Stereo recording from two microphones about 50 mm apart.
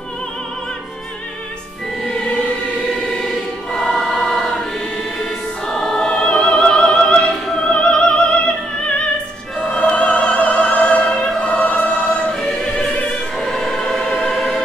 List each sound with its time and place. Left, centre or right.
2.9 s choir: centre
5.7 s music: centre
7.2 s opera: centre
7.7 s opera: centre
9.6 s music: left
10.0 s opera: centre
10.3 s opera: left
12.3 s choir: centre